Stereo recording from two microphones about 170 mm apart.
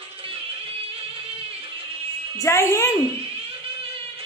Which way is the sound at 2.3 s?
15° left (ahead or behind).